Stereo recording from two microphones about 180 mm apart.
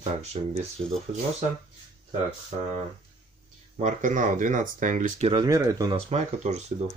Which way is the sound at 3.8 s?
45° right (ahead or behind).